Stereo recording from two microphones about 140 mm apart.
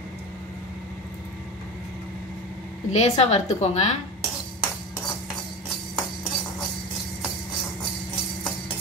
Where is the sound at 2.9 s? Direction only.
50° left (ahead or behind).